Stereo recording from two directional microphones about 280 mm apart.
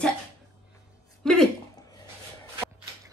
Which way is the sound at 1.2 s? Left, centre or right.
Centre.